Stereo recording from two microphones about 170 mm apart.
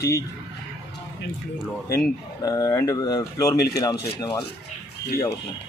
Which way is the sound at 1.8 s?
20° left (ahead or behind).